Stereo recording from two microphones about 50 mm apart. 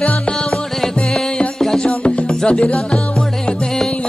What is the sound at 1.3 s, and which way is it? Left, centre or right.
Music, centre.